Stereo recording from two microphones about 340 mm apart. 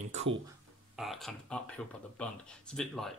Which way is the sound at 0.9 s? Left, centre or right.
Centre.